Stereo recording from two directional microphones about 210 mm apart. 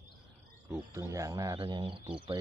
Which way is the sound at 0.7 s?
15° right (ahead or behind).